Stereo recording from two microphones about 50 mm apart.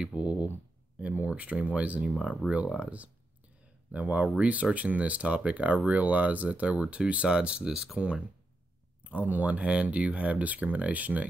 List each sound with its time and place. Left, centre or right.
0.0 s speech: right
2.4 s speech: left
2.8 s speech: right
9.0 s speech: right